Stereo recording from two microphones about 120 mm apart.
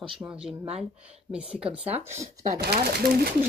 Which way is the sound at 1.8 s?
15° right (ahead or behind).